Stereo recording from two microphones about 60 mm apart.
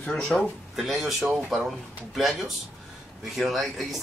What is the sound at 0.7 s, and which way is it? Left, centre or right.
Speech, centre.